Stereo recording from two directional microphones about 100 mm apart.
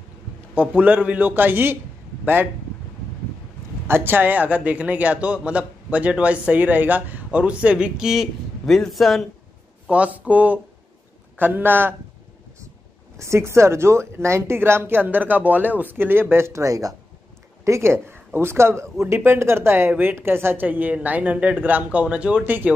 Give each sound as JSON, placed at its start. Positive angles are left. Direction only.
{"t": 0.6, "sound": "speech", "side_deg": -15}
{"t": 3.8, "sound": "speech", "side_deg": -25}
{"t": 9.8, "sound": "a woman's voice", "side_deg": -15}
{"t": 13.2, "sound": "a woman's voice", "side_deg": -30}